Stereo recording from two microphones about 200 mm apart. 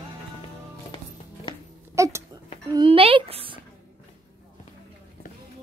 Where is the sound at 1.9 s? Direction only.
15° right (ahead or behind).